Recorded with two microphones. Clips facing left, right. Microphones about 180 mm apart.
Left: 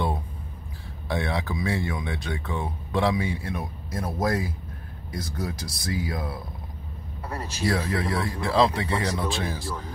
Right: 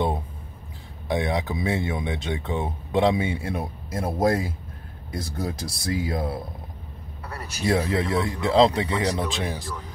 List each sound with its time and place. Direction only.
1.0 s speech: 20° right (ahead or behind)
7.2 s speech: 30° left (ahead or behind)
7.6 s speech: 25° right (ahead or behind)